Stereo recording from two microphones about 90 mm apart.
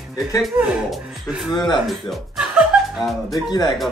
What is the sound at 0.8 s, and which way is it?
Speech, centre (ahead or behind).